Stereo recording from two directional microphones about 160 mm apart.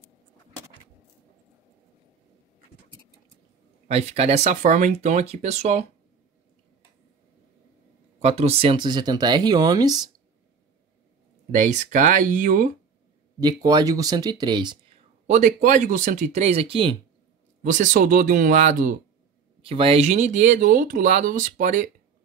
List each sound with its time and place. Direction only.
3.8 s speech: 40° right (ahead or behind)
8.2 s speech: 40° right (ahead or behind); by 10.1 s 25° right (ahead or behind)
11.5 s speech: 50° right (ahead or behind)
13.4 s speech: 25° right (ahead or behind)
15.2 s speech: 50° right (ahead or behind); by 16.9 s 35° right (ahead or behind)
17.6 s speech: 55° right (ahead or behind)
19.6 s speech: 35° right (ahead or behind); by 21.9 s 55° right (ahead or behind)